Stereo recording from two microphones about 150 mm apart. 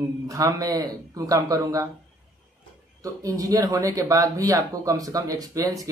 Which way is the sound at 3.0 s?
20° right (ahead or behind).